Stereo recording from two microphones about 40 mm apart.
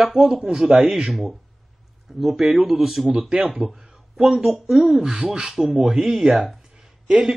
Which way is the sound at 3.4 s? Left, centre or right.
Right.